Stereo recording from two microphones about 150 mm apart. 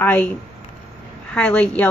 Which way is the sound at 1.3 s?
10° left (ahead or behind).